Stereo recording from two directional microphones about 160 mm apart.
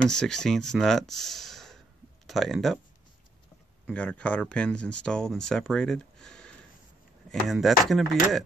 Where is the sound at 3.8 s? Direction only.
10° left (ahead or behind).